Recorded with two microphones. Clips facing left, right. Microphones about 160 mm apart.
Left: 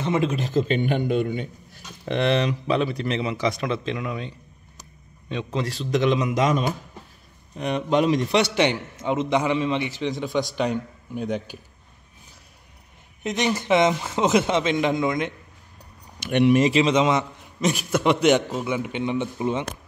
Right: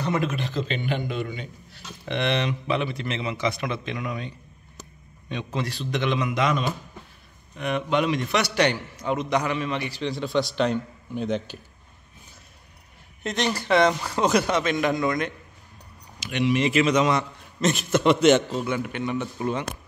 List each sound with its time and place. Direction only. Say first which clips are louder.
0.0 s a man's voice: left 3 dB; 25° left (ahead or behind)
0.4 s a man's voice: left 6 dB; 45° left (ahead or behind)
5.5 s a man's voice: left 4 dB; 35° left (ahead or behind); by 11.5 s 10° left (ahead or behind)
13.2 s a man's voice: left 2 dB; 15° left (ahead or behind)
16.2 s speech: left 6 dB; 55° left (ahead or behind)
16.6 s a man's voice: left 2 dB; 30° left (ahead or behind)